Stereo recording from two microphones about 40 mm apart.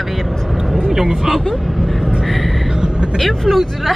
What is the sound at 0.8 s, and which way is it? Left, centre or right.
Speech, centre.